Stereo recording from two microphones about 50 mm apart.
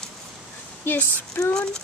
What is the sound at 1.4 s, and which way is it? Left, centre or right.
Speech, left.